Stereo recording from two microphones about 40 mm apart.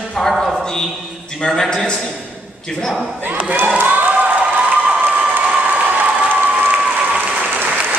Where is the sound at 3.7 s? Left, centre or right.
Right.